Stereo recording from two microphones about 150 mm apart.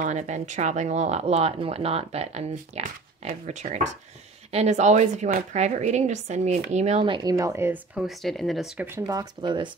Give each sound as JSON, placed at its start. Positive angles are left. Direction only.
{"t": 0.0, "sound": "speech", "side_deg": -55}
{"t": 7.1, "sound": "speech", "side_deg": -25}
{"t": 8.7, "sound": "speech", "side_deg": -15}
{"t": 9.0, "sound": "speech", "side_deg": -25}